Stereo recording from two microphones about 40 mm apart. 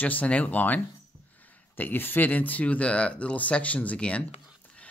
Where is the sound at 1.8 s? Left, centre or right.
Left.